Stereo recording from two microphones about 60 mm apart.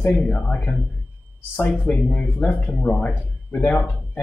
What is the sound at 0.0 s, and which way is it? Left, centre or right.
Speech, left.